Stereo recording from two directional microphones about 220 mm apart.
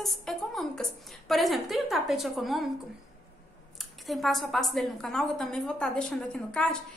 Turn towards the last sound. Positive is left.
turn(degrees=5)  # may be behind; listen again after turning